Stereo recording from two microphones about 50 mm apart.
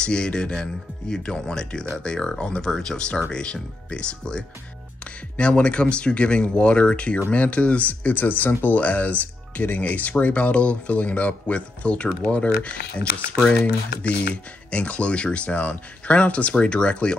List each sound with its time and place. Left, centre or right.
0.0 s speech: centre
14.3 s speech: left